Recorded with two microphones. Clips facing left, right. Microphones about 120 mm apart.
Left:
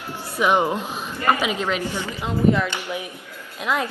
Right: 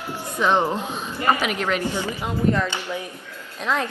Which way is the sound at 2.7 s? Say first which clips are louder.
Even; 15° left (ahead or behind).